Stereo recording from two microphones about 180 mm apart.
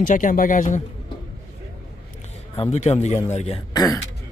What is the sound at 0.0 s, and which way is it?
Speech, 50° left (ahead or behind).